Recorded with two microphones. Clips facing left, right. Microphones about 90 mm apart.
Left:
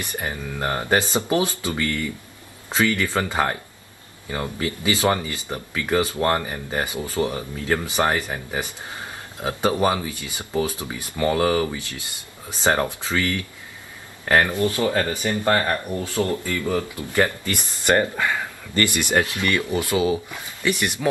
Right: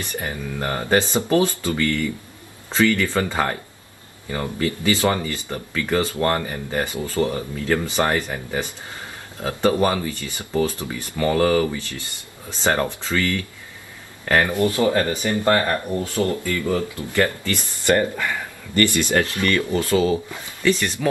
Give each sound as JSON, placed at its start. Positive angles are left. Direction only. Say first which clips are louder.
{"t": 0.1, "sound": "speech", "louder": "right 1 dB", "side_deg": 15}
{"t": 14.4, "sound": "speech", "louder": "right 2 dB", "side_deg": -20}
{"t": 16.0, "sound": "speech", "louder": "right 1 dB", "side_deg": 20}